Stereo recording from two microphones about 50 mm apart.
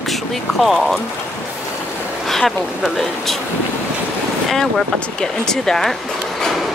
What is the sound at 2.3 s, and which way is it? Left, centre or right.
Speech, centre.